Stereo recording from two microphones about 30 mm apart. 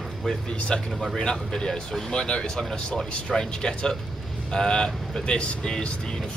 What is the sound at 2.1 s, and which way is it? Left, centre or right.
Speech, left.